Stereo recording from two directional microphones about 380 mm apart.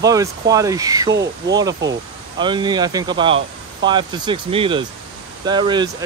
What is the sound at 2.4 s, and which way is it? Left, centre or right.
Speech, centre.